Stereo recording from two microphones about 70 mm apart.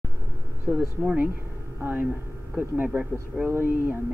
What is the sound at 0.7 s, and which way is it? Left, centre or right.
Speech, right.